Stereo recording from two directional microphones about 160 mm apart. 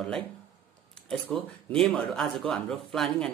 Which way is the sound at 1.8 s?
5° left (ahead or behind).